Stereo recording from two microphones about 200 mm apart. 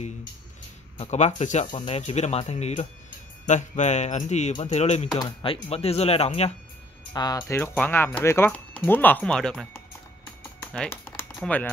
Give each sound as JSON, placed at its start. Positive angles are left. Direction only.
{"t": 0.9, "sound": "speech", "side_deg": 35}
{"t": 5.1, "sound": "speech", "side_deg": 20}
{"t": 7.2, "sound": "speech", "side_deg": 20}
{"t": 10.6, "sound": "typing", "side_deg": 10}
{"t": 11.3, "sound": "speech", "side_deg": 5}